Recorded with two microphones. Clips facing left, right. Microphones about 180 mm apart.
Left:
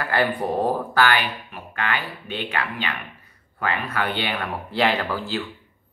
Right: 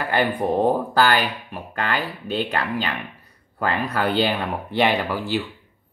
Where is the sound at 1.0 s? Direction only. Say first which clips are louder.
Right 2 dB; 35° right (ahead or behind).